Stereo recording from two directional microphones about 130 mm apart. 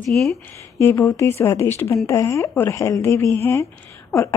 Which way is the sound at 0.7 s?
20° left (ahead or behind).